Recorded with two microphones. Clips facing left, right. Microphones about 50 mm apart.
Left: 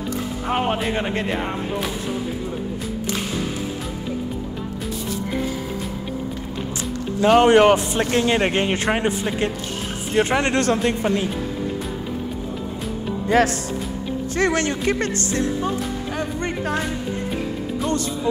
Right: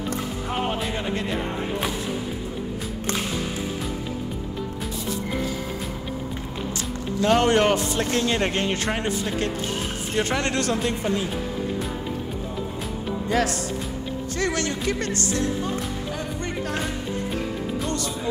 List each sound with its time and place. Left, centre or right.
0.5 s music: left
7.2 s speech: centre
10.6 s speech: left
13.3 s speech: left
17.8 s speech: left